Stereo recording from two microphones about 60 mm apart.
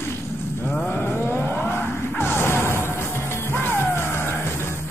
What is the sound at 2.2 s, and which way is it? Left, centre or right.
Music, left.